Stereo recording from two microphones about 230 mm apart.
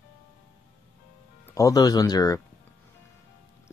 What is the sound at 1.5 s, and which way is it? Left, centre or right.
Speech, centre.